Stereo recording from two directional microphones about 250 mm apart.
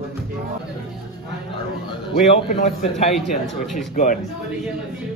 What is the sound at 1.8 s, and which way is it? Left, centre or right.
A man's voice, left.